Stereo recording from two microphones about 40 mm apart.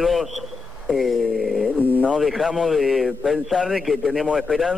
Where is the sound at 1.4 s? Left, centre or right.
Centre.